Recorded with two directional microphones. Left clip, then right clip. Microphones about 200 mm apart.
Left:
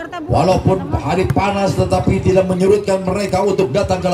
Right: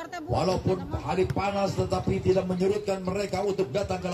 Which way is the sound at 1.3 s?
20° left (ahead or behind).